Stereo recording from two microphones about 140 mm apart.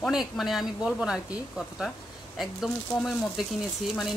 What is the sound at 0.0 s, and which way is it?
Speech, centre (ahead or behind).